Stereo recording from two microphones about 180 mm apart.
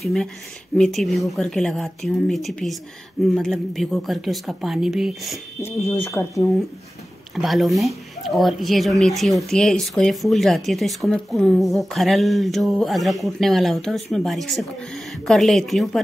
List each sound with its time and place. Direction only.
0.0 s speech: 5° left (ahead or behind)
5.7 s speech: 15° left (ahead or behind)
7.3 s speech: centre (ahead or behind)